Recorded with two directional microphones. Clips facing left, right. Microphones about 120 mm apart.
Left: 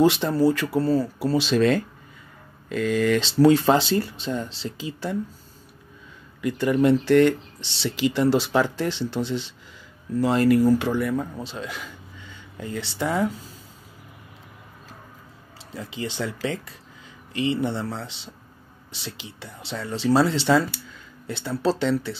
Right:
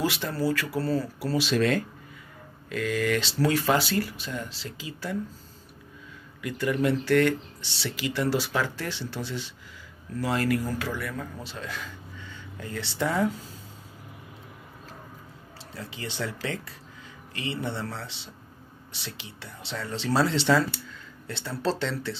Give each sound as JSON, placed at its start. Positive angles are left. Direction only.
{"t": 0.0, "sound": "speech", "side_deg": 25}
{"t": 6.4, "sound": "speech", "side_deg": 30}
{"t": 15.7, "sound": "speech", "side_deg": 15}
{"t": 17.3, "sound": "speech", "side_deg": 20}